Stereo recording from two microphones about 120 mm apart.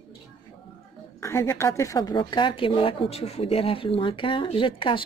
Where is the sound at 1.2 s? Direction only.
25° left (ahead or behind).